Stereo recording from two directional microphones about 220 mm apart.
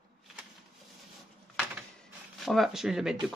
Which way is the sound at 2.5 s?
Centre (ahead or behind).